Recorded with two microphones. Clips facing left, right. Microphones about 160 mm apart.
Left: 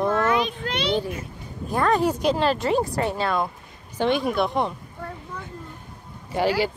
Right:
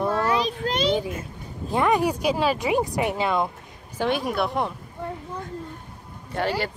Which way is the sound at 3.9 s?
5° right (ahead or behind).